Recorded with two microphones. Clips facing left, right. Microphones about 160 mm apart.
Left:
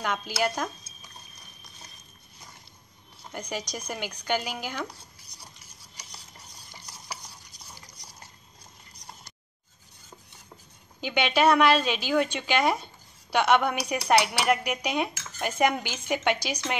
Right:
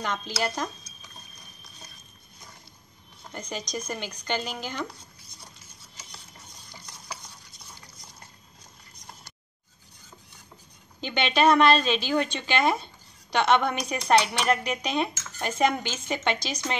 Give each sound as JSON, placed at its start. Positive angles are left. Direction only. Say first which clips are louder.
{"t": 0.0, "sound": "a woman's voice", "louder": "left 2 dB", "side_deg": 10}
{"t": 3.3, "sound": "a woman's voice", "louder": "left 1 dB", "side_deg": 10}
{"t": 11.0, "sound": "a woman's voice", "louder": "even", "side_deg": 10}